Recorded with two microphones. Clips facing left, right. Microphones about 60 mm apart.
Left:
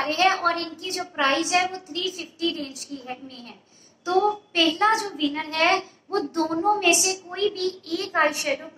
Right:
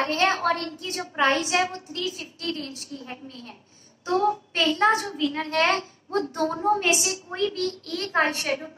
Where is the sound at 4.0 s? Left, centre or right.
Left.